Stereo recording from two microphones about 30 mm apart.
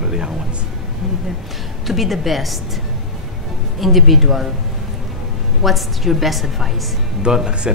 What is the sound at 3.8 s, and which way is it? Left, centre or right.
Speech, centre.